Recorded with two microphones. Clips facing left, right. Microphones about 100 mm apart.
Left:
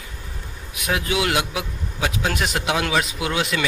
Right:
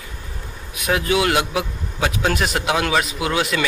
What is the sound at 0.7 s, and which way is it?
Speech, 15° left (ahead or behind).